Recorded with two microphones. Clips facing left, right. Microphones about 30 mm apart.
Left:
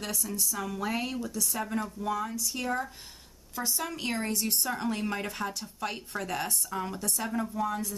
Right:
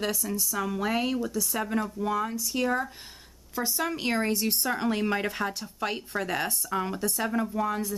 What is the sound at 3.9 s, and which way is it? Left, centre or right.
Speech, right.